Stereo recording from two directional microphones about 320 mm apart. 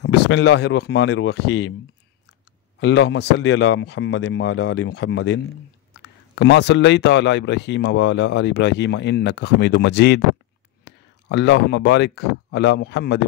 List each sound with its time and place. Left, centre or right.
0.0 s speech: left
2.8 s speech: left